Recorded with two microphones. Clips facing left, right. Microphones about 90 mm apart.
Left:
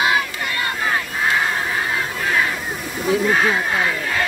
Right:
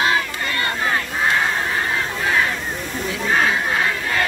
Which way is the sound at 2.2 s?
Centre (ahead or behind).